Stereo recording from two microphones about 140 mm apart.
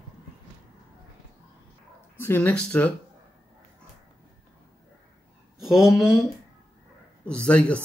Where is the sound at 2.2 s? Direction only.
15° left (ahead or behind).